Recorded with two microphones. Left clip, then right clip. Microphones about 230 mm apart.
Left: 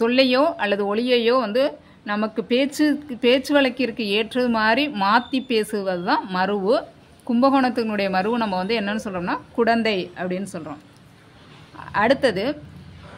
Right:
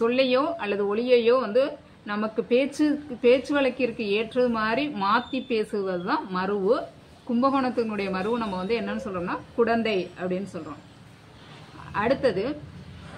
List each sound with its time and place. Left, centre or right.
0.0 s speech: left
11.9 s speech: left